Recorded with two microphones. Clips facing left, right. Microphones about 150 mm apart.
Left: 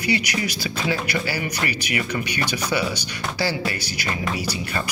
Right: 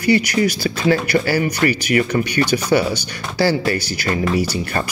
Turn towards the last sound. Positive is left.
turn(degrees=-45)  # may be behind; listen again after turning